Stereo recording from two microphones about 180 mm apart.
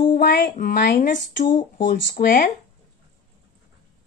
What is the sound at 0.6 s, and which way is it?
A child's voice, 50° left (ahead or behind).